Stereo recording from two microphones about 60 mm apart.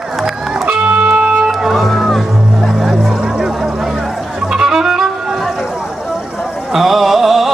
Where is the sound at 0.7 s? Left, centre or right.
Centre.